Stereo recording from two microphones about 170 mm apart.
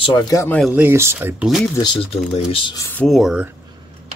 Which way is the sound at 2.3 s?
30° left (ahead or behind).